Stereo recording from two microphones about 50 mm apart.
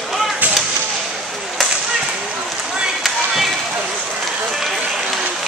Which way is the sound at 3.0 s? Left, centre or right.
Centre.